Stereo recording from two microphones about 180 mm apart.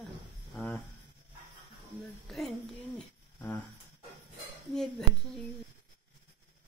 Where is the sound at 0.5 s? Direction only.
5° left (ahead or behind).